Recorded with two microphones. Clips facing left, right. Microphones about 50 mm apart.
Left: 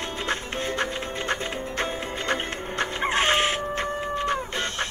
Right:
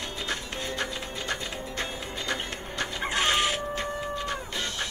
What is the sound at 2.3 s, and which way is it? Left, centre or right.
Chicken, left.